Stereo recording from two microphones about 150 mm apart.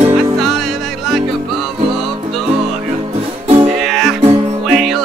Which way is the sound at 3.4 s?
40° right (ahead or behind).